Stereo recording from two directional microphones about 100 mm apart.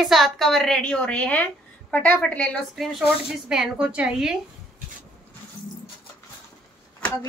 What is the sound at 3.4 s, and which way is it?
Speech, 5° right (ahead or behind).